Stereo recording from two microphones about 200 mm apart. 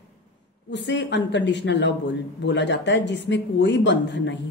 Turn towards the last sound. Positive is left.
turn(degrees=65)  # may be behind; listen again after turning